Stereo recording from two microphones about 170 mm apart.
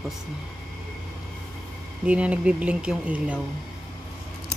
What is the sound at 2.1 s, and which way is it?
Speech, 5° right (ahead or behind).